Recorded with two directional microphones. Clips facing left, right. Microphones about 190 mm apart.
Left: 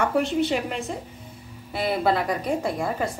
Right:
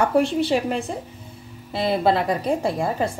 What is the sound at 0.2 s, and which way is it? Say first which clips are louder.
A woman's voice: right 3 dB; 35° right (ahead or behind).